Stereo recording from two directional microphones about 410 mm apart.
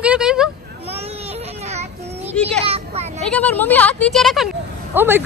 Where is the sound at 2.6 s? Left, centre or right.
Centre.